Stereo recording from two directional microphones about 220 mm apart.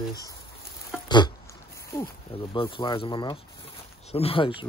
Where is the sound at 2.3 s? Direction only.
25° left (ahead or behind).